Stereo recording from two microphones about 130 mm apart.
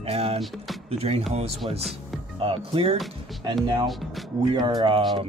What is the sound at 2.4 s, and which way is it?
Speech, 45° right (ahead or behind).